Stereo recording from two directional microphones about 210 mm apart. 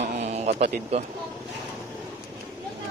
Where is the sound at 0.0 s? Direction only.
30° right (ahead or behind).